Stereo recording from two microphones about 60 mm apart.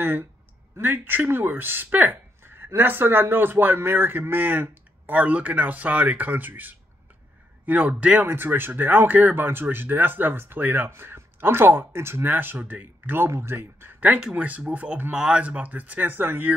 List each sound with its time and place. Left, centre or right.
0.0 s speech: right
8.3 s speech: right
10.9 s speech: right